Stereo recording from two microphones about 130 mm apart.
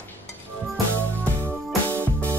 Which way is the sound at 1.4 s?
15° right (ahead or behind).